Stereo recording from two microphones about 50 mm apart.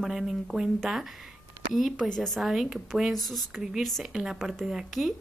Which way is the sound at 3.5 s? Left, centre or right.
Centre.